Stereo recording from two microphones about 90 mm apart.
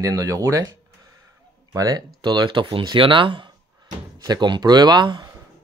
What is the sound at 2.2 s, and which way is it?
Speech, 55° right (ahead or behind).